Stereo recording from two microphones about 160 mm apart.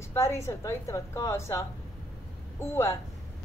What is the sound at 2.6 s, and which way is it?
Speech, 15° left (ahead or behind).